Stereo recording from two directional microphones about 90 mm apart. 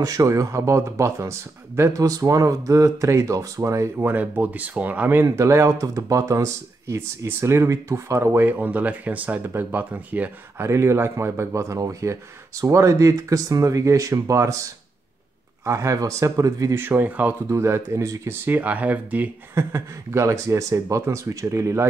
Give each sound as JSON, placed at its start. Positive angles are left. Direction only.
{"t": 0.0, "sound": "speech", "side_deg": -40}
{"t": 4.0, "sound": "speech", "side_deg": -20}
{"t": 10.6, "sound": "speech", "side_deg": -30}
{"t": 16.8, "sound": "speech", "side_deg": -20}
{"t": 19.5, "sound": "speech", "side_deg": -30}